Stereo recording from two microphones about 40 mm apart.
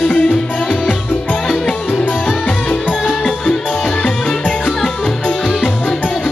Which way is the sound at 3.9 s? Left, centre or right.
Left.